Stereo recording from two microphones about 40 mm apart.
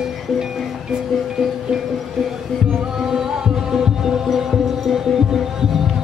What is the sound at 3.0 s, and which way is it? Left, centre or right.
Music, centre.